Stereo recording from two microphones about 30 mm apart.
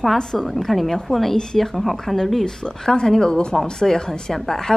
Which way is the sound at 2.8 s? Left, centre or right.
Centre.